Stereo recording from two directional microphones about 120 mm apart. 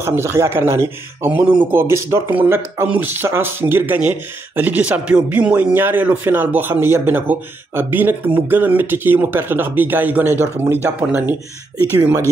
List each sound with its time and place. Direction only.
0.0 s speech: 20° right (ahead or behind)